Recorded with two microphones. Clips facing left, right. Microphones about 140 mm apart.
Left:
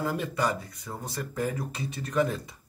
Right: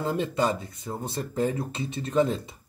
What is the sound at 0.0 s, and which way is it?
Speech, 25° right (ahead or behind).